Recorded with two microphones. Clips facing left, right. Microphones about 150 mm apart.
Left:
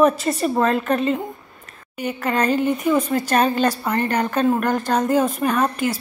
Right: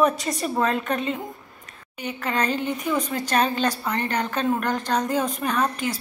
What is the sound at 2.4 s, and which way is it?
Speech, 45° left (ahead or behind).